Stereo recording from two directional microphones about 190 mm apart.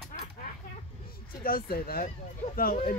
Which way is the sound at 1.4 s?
50° left (ahead or behind).